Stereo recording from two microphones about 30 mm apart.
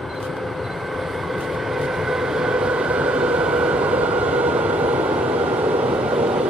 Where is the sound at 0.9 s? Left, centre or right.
Centre.